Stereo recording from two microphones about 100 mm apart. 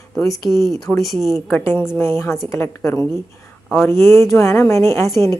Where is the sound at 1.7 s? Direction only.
20° left (ahead or behind).